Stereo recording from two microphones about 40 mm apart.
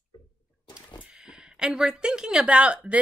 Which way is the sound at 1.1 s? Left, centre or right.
Centre.